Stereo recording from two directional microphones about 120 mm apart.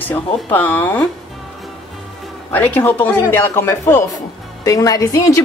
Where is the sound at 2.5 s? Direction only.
15° left (ahead or behind).